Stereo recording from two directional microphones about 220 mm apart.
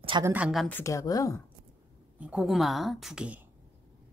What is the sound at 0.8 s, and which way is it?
Speech, 15° left (ahead or behind).